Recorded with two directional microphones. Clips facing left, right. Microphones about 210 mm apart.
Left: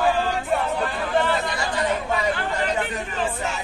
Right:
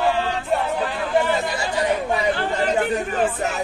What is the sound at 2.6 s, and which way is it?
Chatter, 45° right (ahead or behind).